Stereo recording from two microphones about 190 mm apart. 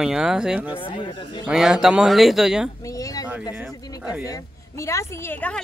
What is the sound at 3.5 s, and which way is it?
Speech, 10° right (ahead or behind).